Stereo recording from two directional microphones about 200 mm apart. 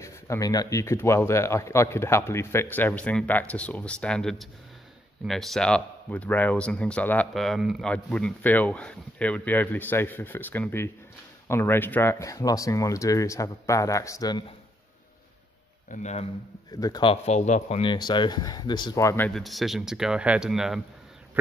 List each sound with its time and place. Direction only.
0.0 s speech: 15° left (ahead or behind)
15.9 s speech: 35° left (ahead or behind)
16.7 s speech: 20° left (ahead or behind); by 20.8 s centre (ahead or behind)